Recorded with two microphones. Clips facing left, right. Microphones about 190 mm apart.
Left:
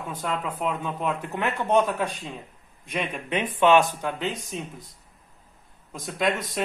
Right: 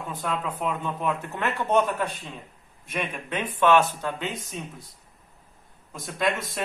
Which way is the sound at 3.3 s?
15° left (ahead or behind).